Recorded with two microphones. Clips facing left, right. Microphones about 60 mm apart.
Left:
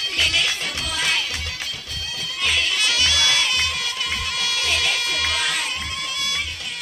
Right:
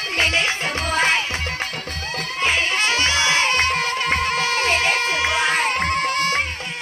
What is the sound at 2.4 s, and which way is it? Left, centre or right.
Music, right.